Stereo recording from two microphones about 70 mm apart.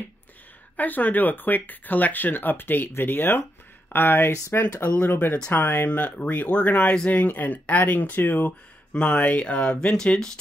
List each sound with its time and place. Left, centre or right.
0.7 s speech: left; by 10.4 s centre